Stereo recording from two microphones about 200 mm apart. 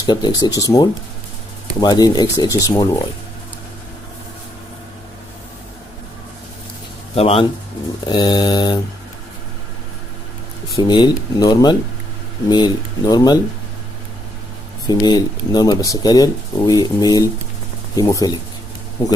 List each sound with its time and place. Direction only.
0.0 s speech: 20° left (ahead or behind)
7.2 s speech: 30° left (ahead or behind)
10.8 s speech: 25° left (ahead or behind)
14.9 s speech: 20° left (ahead or behind)